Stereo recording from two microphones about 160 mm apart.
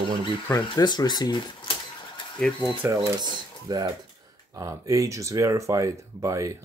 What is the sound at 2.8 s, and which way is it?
Speech, 25° right (ahead or behind).